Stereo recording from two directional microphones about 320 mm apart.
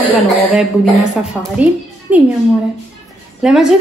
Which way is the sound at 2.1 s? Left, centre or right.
Centre.